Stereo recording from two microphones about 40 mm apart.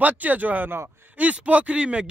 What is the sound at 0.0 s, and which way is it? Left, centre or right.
Speech, right.